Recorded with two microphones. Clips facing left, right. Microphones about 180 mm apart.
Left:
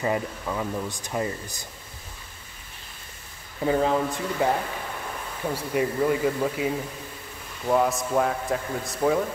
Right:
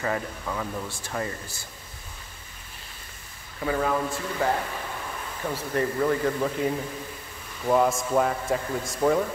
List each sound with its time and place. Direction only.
0.0 s speech: 15° left (ahead or behind)
3.6 s speech: 25° left (ahead or behind)
5.5 s speech: 10° left (ahead or behind)